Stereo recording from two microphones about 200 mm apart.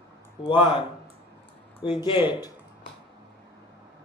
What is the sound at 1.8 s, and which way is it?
Speech, 25° left (ahead or behind).